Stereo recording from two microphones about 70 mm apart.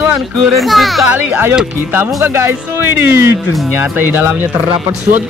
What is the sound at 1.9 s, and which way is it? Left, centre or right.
Speech, right.